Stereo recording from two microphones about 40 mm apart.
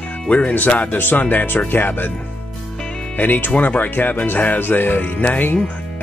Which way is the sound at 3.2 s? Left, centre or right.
Left.